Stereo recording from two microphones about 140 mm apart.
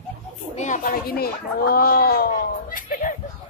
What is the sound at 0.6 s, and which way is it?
Speech, 70° left (ahead or behind).